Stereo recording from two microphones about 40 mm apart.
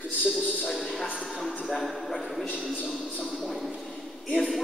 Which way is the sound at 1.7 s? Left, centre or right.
Centre.